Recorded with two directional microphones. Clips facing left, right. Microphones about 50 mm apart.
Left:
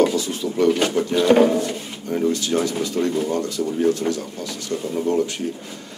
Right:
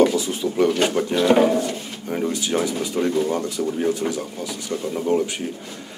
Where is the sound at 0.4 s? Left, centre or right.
Centre.